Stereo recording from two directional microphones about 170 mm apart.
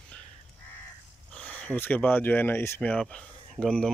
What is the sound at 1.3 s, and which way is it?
Speech, 5° left (ahead or behind).